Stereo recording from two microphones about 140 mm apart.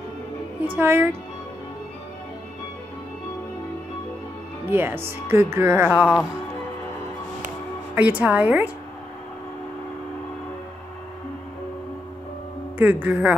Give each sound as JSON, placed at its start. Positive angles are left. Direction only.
{"t": 0.7, "sound": "speech", "side_deg": -15}
{"t": 4.6, "sound": "speech", "side_deg": -15}
{"t": 7.9, "sound": "speech", "side_deg": -10}
{"t": 12.7, "sound": "speech", "side_deg": -10}